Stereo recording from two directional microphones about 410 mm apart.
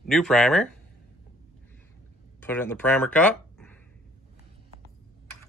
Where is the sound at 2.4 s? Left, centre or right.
Centre.